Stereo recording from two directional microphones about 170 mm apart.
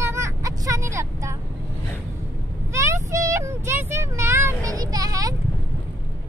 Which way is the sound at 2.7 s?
15° right (ahead or behind).